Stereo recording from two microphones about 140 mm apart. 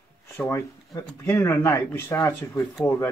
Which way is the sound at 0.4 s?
20° left (ahead or behind).